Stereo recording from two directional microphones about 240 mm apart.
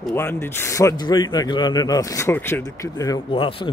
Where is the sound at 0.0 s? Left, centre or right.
Centre.